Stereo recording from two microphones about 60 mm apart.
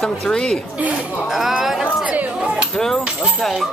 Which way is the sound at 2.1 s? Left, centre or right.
Right.